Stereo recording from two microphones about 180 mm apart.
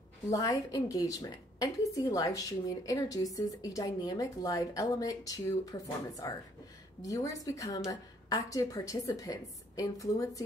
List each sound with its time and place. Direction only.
0.3 s a woman's voice: 20° left (ahead or behind)